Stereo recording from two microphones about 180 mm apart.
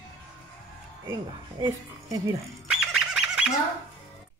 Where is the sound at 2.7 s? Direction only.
Centre (ahead or behind).